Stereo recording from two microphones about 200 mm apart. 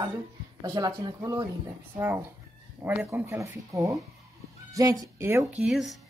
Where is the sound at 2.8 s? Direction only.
10° right (ahead or behind).